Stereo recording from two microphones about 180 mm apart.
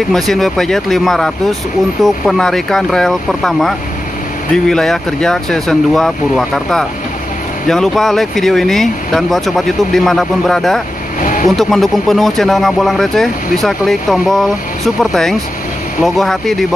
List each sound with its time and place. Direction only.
0.1 s speech: centre (ahead or behind)
11.1 s speech: 45° left (ahead or behind)
11.5 s speech: centre (ahead or behind)
16.0 s speech: centre (ahead or behind)